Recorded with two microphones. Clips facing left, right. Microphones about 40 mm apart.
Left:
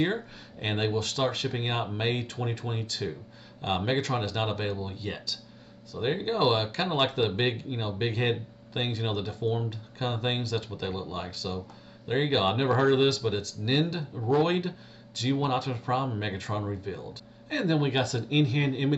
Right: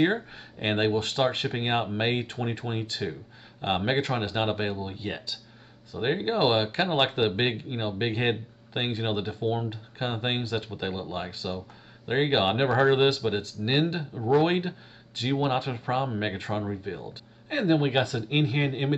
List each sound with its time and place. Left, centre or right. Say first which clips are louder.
0.0 s speech: right 4 dB; right